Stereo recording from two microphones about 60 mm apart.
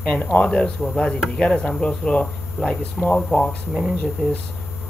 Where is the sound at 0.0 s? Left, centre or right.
Left.